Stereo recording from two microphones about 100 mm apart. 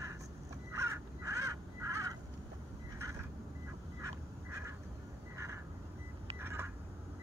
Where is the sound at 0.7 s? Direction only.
25° right (ahead or behind).